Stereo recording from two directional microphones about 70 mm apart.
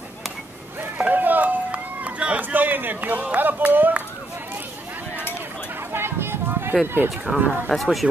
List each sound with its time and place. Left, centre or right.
0.9 s run: right
5.9 s a sound: right
7.0 s speech: right
7.3 s speech: right
7.7 s speech: centre